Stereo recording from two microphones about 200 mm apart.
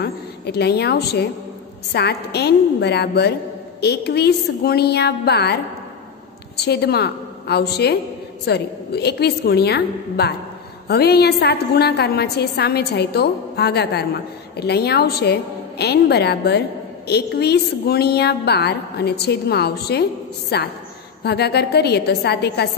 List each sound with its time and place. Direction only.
0.0 s a woman's voice: 55° left (ahead or behind)